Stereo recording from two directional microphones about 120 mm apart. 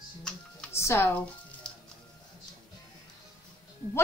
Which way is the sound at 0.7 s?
20° left (ahead or behind).